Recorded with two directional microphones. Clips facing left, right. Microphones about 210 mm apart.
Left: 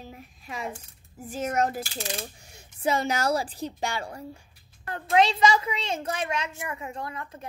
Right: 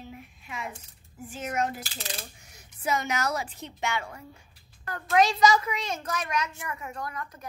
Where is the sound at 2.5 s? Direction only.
30° left (ahead or behind).